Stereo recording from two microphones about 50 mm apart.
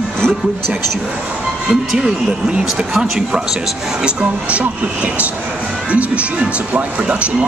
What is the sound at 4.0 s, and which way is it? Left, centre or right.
Speech, right.